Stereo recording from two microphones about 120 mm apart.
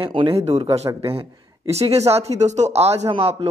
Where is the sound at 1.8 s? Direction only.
60° right (ahead or behind).